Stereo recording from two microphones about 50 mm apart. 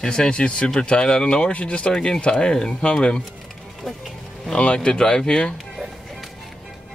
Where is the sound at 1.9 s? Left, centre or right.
Centre.